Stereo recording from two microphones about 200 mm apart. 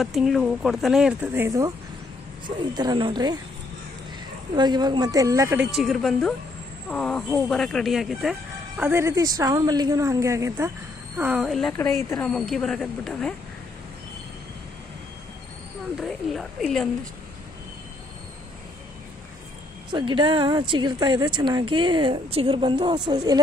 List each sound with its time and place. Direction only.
0.0 s speech: centre (ahead or behind); by 3.3 s 20° right (ahead or behind)
4.6 s speech: 20° right (ahead or behind); by 13.3 s centre (ahead or behind)
16.0 s speech: centre (ahead or behind)
19.9 s speech: 25° right (ahead or behind)